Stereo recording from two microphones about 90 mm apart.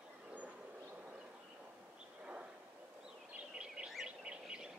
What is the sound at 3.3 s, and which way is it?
Bird, 10° right (ahead or behind).